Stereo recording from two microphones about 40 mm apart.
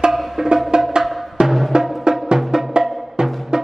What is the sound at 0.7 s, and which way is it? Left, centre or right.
Music, centre.